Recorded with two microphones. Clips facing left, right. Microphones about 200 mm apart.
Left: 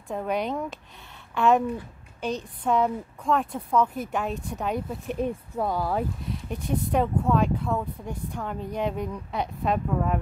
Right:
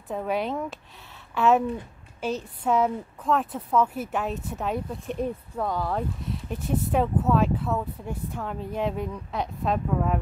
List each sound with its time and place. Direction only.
0.1 s speech: centre (ahead or behind)